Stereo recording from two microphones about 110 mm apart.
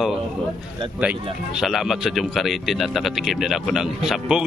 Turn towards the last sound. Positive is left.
turn(degrees=-5)  # may be behind; listen again after turning